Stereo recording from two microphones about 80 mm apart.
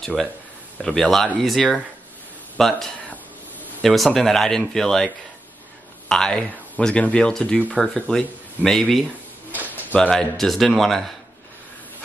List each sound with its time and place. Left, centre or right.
0.0 s speech: centre
3.8 s speech: centre
9.5 s a sound: right
9.9 s speech: centre